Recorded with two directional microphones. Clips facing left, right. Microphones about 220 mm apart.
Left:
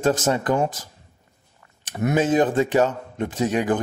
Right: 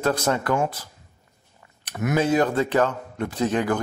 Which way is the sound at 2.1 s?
20° left (ahead or behind).